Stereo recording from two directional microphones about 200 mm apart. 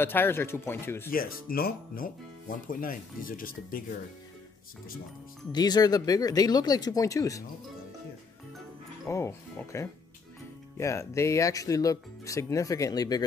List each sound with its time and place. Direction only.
0.0 s speech: 10° left (ahead or behind)
1.1 s speech: 45° left (ahead or behind)
5.5 s speech: 20° left (ahead or behind)
9.0 s speech: 15° left (ahead or behind)